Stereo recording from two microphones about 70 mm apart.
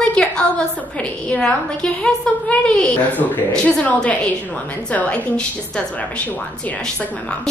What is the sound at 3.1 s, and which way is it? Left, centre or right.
Speech, left.